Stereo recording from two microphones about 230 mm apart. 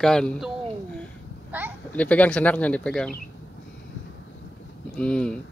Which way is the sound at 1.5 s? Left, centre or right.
Centre.